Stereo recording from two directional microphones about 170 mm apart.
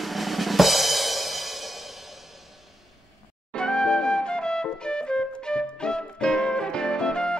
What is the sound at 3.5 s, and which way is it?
Music, 5° left (ahead or behind).